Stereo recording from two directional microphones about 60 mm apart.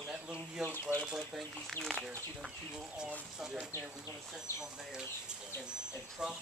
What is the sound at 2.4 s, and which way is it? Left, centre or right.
Speech, centre.